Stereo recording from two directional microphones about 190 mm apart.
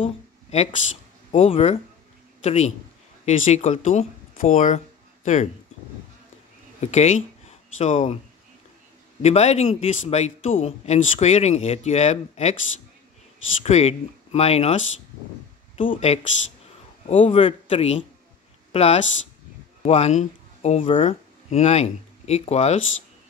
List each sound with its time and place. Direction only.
0.0 s speech: 30° left (ahead or behind)
6.8 s speech: 35° left (ahead or behind)
7.4 s a sound: 40° left (ahead or behind)
9.2 s speech: 35° left (ahead or behind)
13.7 s speech: 35° left (ahead or behind)
15.9 s speech: 35° left (ahead or behind)